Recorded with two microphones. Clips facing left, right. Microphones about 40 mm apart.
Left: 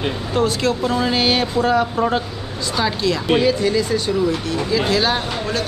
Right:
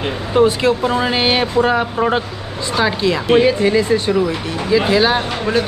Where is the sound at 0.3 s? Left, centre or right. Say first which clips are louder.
Right 6 dB; right.